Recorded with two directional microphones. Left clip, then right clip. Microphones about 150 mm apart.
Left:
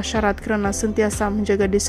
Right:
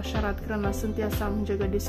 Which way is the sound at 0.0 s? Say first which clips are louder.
Left 10 dB; 35° left (ahead or behind).